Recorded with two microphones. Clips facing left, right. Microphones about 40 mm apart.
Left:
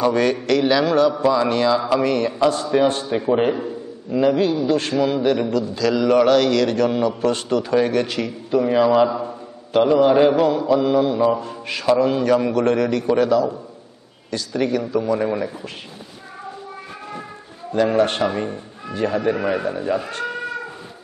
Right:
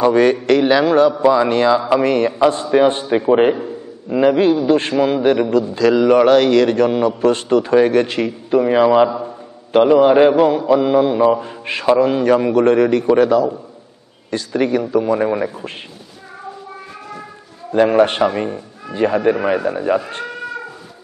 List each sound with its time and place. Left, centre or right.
0.0 s a man's voice: right
17.7 s a man's voice: right